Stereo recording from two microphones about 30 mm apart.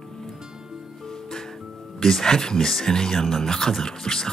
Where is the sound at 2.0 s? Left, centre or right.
Centre.